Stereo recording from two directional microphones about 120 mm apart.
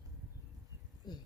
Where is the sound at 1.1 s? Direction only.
35° left (ahead or behind).